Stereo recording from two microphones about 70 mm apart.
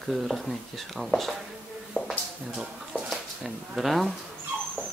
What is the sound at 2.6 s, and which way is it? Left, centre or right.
Speech, centre.